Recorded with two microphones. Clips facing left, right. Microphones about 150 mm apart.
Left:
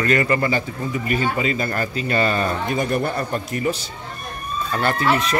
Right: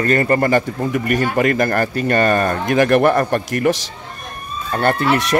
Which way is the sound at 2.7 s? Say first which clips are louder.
Right 8 dB; 80° right.